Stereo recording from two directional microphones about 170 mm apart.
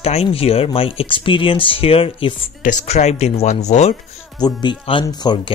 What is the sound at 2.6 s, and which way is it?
Speech, 45° left (ahead or behind).